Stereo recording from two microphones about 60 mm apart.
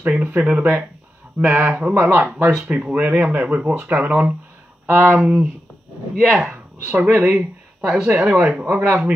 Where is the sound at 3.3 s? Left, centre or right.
Right.